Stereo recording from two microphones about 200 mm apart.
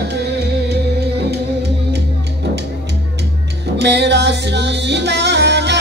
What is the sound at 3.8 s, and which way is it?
Music, 60° right (ahead or behind).